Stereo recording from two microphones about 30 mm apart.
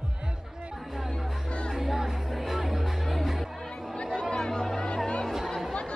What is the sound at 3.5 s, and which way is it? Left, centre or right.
Music, centre.